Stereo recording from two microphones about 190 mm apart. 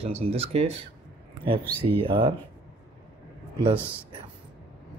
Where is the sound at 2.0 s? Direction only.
25° right (ahead or behind).